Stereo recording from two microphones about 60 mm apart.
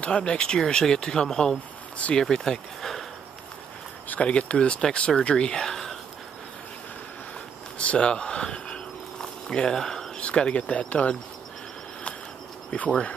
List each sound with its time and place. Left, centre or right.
0.0 s speech: centre
4.1 s speech: centre
7.8 s speech: left
9.2 s a sound: centre
10.2 s speech: centre
12.7 s speech: left